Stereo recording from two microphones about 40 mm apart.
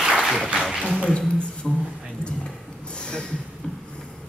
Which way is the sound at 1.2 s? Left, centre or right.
Left.